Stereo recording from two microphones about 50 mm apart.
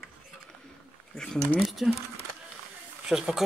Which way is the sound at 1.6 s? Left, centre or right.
Centre.